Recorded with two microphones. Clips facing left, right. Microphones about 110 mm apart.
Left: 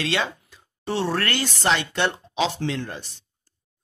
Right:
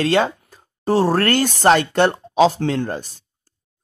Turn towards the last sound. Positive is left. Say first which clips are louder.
# right 7 dB
turn(degrees=-45)  # may be behind; listen again after turning